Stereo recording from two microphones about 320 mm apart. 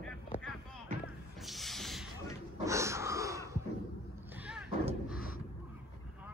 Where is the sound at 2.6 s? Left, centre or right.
Centre.